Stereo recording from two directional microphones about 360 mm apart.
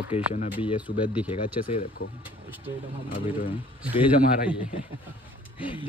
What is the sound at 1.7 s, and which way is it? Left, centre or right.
Speech, left.